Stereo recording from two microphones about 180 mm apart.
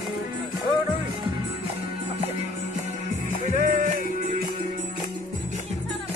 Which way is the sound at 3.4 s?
50° right (ahead or behind).